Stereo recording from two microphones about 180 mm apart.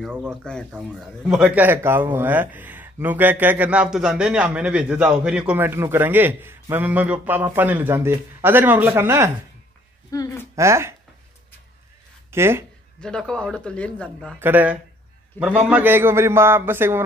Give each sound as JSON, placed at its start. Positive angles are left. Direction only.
{"t": 0.3, "sound": "speech", "side_deg": 5}
{"t": 10.1, "sound": "speech", "side_deg": 20}
{"t": 10.5, "sound": "speech", "side_deg": -15}
{"t": 12.3, "sound": "speech", "side_deg": -15}
{"t": 13.0, "sound": "speech", "side_deg": 5}
{"t": 14.4, "sound": "speech", "side_deg": -10}